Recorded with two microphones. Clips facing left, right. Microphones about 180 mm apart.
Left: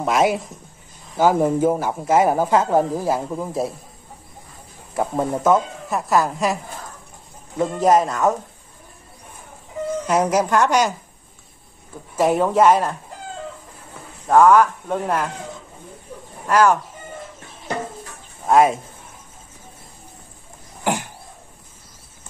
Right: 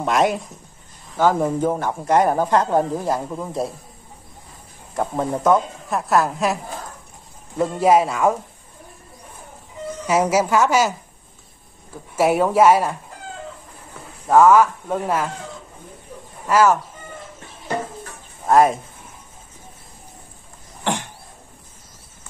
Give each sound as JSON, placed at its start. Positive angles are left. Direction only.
{"t": 0.0, "sound": "a woman's voice", "side_deg": 0}
{"t": 4.9, "sound": "a woman's voice", "side_deg": 5}
{"t": 10.0, "sound": "a woman's voice", "side_deg": -5}
{"t": 12.2, "sound": "speech", "side_deg": -10}
{"t": 14.2, "sound": "speech", "side_deg": -5}
{"t": 16.4, "sound": "speech", "side_deg": -5}
{"t": 18.4, "sound": "speech", "side_deg": 0}